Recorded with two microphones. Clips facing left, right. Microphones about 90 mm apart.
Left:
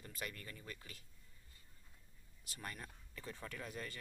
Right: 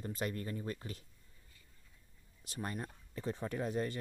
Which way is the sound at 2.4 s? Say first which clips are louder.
Right 8 dB; 25° right (ahead or behind).